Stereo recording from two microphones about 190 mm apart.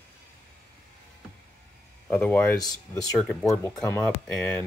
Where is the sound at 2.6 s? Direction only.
20° left (ahead or behind).